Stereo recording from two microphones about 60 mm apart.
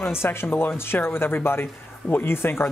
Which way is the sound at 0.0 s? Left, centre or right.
Left.